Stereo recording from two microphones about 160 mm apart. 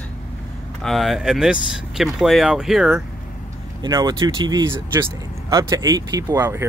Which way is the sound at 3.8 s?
25° right (ahead or behind).